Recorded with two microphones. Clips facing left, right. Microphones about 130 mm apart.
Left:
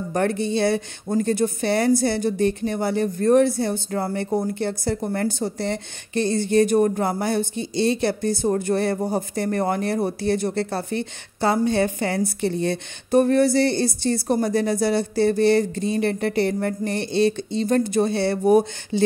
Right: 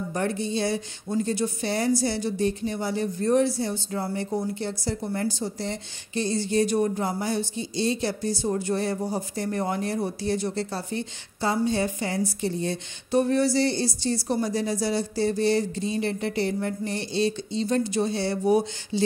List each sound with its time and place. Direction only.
0.1 s a woman's voice: 60° left (ahead or behind)